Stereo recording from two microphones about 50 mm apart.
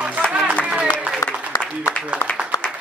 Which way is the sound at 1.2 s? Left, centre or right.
Left.